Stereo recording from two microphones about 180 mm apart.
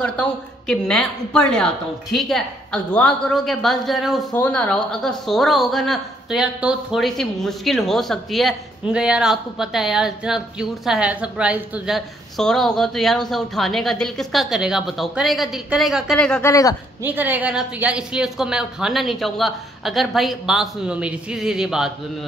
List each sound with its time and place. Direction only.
0.0 s a woman's voice: 5° left (ahead or behind)
16.4 s speech: 20° left (ahead or behind)
17.0 s a woman's voice: 10° right (ahead or behind)